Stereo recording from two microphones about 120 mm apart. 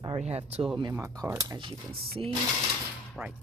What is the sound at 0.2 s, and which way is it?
Speech, 60° right (ahead or behind).